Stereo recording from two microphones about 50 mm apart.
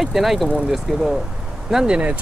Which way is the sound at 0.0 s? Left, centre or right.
Centre.